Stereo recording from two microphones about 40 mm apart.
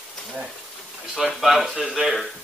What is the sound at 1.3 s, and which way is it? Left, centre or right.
Speech, centre.